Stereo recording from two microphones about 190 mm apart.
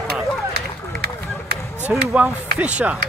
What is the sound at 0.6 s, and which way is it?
Run, 55° right (ahead or behind).